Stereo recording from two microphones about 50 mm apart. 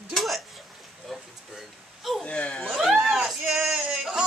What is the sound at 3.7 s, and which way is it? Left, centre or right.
Speech, centre.